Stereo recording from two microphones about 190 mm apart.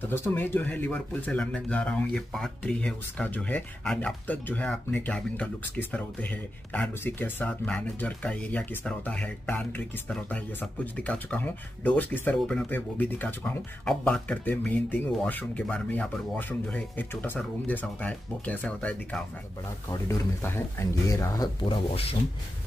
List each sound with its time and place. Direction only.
0.1 s speech: 10° left (ahead or behind); by 22.1 s 30° left (ahead or behind)